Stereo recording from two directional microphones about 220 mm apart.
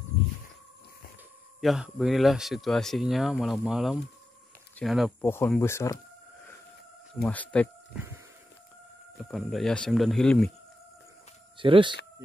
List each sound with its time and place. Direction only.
1.6 s speech: centre (ahead or behind)
5.3 s speech: 10° left (ahead or behind)
7.2 s speech: 5° left (ahead or behind)
7.9 s a sound: 10° right (ahead or behind)
9.2 s speech: centre (ahead or behind)
11.5 s speech: 25° right (ahead or behind)